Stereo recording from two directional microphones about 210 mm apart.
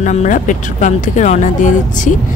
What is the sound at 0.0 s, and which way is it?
Speech, 35° left (ahead or behind).